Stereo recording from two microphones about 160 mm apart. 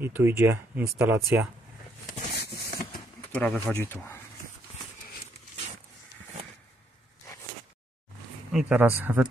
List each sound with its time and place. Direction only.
0.0 s speech: 15° right (ahead or behind)
2.0 s a sound: 90° left
3.3 s speech: 10° left (ahead or behind)
8.5 s speech: 5° right (ahead or behind)